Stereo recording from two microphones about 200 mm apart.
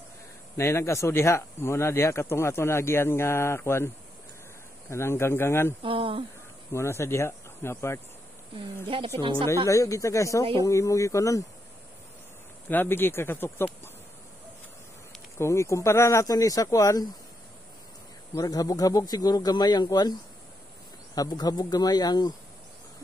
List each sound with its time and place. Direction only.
0.6 s speech: 15° left (ahead or behind)
5.8 s speech: 25° right (ahead or behind)
6.7 s speech: 15° left (ahead or behind)
8.8 s speech: 25° right (ahead or behind)
9.7 s speech: 15° left (ahead or behind)
12.6 s speech: 10° left (ahead or behind)
15.3 s speech: 15° left (ahead or behind)
18.3 s speech: 20° left (ahead or behind)